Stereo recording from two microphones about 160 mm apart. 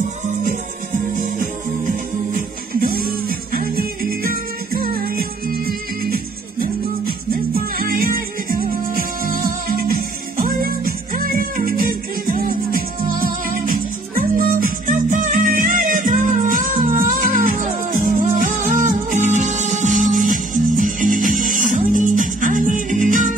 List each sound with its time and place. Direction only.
0.9 s music: 55° right (ahead or behind)